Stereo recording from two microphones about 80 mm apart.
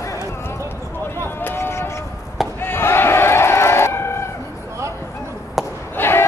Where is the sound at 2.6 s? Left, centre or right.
Left.